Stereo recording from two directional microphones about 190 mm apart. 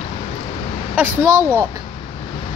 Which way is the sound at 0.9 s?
10° right (ahead or behind).